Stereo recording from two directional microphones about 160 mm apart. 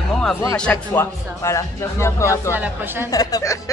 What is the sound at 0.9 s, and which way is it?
Speech, 15° left (ahead or behind).